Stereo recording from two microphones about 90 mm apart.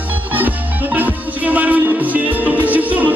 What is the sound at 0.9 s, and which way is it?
Music, 20° right (ahead or behind).